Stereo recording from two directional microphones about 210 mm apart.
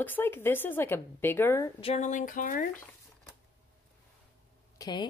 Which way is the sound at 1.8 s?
30° left (ahead or behind).